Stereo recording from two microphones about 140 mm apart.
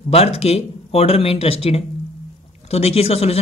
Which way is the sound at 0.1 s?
45° left (ahead or behind).